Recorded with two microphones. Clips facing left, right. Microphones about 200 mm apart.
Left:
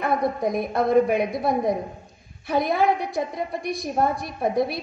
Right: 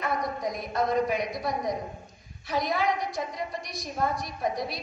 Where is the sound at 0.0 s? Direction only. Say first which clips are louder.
Left 7 dB; 55° left (ahead or behind).